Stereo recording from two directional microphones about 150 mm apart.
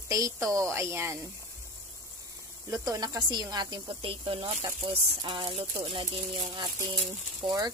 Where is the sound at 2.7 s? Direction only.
25° right (ahead or behind).